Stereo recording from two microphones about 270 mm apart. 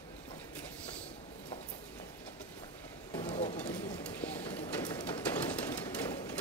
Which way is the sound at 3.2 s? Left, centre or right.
Left.